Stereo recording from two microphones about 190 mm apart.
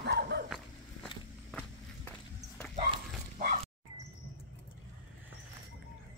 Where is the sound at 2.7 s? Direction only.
35° right (ahead or behind).